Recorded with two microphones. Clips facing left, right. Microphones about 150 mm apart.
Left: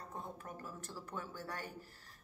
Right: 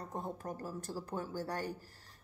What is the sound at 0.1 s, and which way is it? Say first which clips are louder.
A woman's voice: right 6 dB; 40° right (ahead or behind).